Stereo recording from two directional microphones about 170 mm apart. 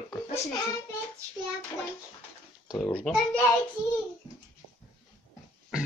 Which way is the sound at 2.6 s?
25° left (ahead or behind).